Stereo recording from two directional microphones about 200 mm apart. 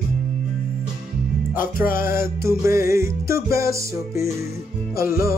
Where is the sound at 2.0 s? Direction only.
10° right (ahead or behind).